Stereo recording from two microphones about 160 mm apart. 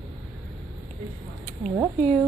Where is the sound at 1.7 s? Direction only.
20° right (ahead or behind).